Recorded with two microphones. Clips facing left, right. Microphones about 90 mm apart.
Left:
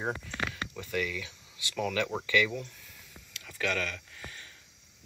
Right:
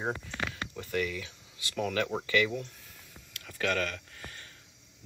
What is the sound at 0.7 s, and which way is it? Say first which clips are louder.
Speech: right 1 dB; 35° right (ahead or behind).